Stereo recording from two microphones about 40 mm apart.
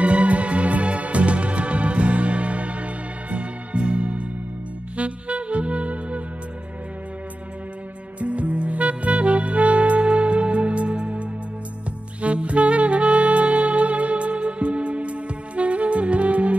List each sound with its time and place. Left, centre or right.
0.0 s music: right
4.9 s saxophone: right
8.2 s music: right
12.2 s saxophone: right